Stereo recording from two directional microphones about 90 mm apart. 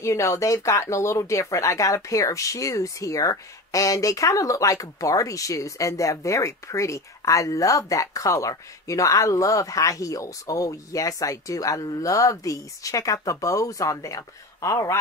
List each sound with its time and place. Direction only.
0.0 s speech: 35° left (ahead or behind)